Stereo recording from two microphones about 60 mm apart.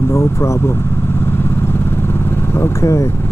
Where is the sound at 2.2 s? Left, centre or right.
Left.